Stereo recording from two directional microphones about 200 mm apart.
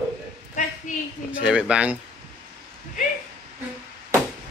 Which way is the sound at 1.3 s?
5° right (ahead or behind).